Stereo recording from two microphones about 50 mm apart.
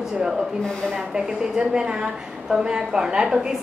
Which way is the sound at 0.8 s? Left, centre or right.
Centre.